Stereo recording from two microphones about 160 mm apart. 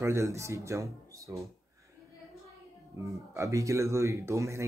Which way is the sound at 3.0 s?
20° right (ahead or behind).